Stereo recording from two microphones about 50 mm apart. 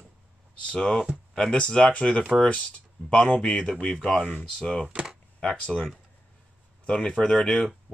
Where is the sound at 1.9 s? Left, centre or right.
Left.